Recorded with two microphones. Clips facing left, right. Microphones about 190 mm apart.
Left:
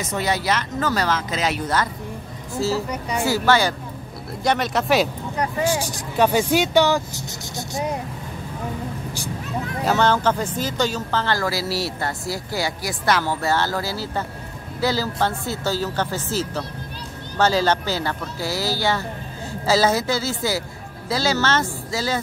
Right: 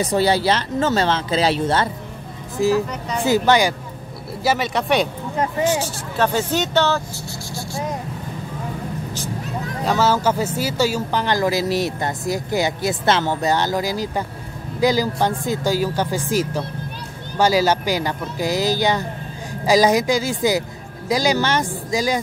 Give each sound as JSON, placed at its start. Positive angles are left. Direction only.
{"t": 0.0, "sound": "speech", "side_deg": -30}
{"t": 2.9, "sound": "speech", "side_deg": 10}
{"t": 3.3, "sound": "speech", "side_deg": -20}
{"t": 4.4, "sound": "speech", "side_deg": -5}
{"t": 5.7, "sound": "speech", "side_deg": 15}
{"t": 9.8, "sound": "speech", "side_deg": -5}